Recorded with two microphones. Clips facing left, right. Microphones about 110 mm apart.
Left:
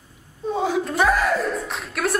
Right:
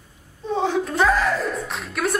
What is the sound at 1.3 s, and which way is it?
Music, centre (ahead or behind).